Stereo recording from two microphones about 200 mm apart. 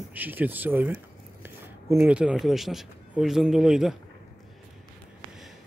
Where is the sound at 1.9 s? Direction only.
5° right (ahead or behind).